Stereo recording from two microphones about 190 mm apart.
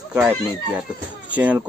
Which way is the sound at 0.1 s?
5° right (ahead or behind).